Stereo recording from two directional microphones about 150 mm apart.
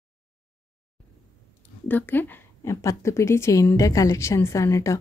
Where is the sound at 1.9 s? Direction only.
10° left (ahead or behind).